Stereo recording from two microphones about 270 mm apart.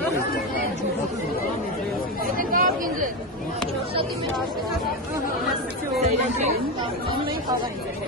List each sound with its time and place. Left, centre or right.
2.5 s chatter: right
5.9 s chatter: right